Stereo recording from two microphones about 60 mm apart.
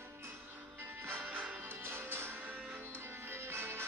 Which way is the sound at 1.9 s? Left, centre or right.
Right.